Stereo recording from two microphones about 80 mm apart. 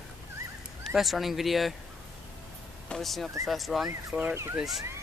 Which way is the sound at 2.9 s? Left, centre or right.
Centre.